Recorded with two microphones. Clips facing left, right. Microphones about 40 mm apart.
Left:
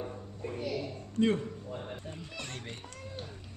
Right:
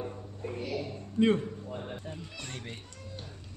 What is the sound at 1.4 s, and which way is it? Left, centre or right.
A man's voice, centre.